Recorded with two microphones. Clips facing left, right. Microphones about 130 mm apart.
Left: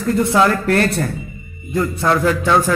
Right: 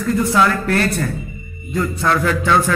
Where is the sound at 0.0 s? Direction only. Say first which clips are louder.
Left 1 dB; 25° left (ahead or behind).